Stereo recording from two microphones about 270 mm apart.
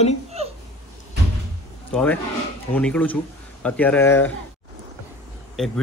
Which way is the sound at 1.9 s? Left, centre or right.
Centre.